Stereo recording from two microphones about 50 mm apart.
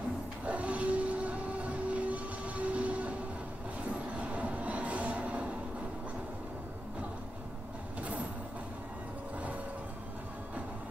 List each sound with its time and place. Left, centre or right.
0.5 s train: right
4.2 s train: right
8.0 s mechanisms: right